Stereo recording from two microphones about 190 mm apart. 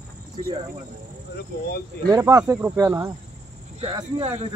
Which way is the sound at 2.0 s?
15° right (ahead or behind).